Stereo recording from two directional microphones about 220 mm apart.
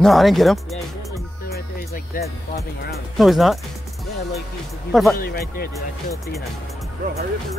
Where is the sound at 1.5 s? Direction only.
40° left (ahead or behind).